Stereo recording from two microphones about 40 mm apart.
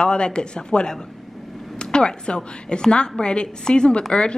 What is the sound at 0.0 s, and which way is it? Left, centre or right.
A woman's voice, left.